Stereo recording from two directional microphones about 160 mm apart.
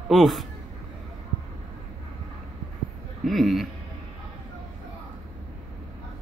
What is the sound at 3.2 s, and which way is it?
Speech, centre (ahead or behind).